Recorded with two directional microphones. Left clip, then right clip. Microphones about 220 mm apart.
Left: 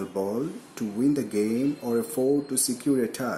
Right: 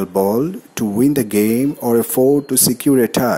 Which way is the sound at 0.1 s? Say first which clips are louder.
Right 14 dB; 35° right (ahead or behind).